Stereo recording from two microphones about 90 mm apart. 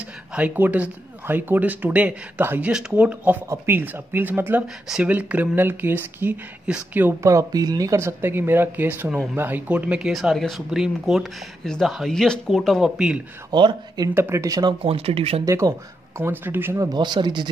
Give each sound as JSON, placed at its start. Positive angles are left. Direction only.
{"t": 0.3, "sound": "speech", "side_deg": -15}
{"t": 7.2, "sound": "speech", "side_deg": -40}
{"t": 12.9, "sound": "speech", "side_deg": -10}
{"t": 13.5, "sound": "speech", "side_deg": -55}
{"t": 14.1, "sound": "speech", "side_deg": -25}
{"t": 14.4, "sound": "speech", "side_deg": -40}
{"t": 14.7, "sound": "speech", "side_deg": -90}
{"t": 15.4, "sound": "speech", "side_deg": -35}
{"t": 16.2, "sound": "speech", "side_deg": -25}
{"t": 16.9, "sound": "speech", "side_deg": -55}